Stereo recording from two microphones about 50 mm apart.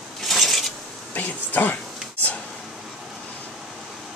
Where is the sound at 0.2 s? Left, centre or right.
Centre.